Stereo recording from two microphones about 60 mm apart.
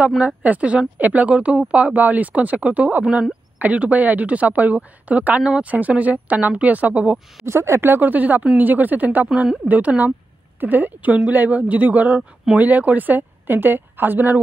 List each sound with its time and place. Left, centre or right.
0.4 s speech: right
7.4 s a woman's voice: right